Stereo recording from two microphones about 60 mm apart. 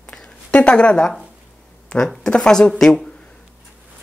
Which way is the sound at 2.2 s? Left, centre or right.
Centre.